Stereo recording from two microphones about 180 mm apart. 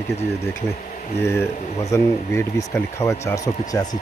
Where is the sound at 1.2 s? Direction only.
15° left (ahead or behind).